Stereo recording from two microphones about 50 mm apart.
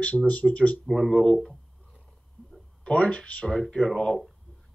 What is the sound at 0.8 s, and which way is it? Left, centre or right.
Speech, centre.